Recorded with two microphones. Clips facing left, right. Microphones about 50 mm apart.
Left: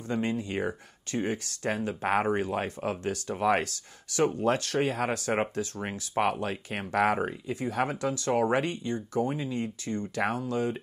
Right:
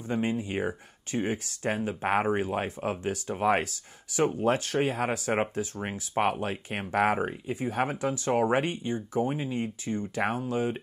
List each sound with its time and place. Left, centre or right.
0.1 s speech: centre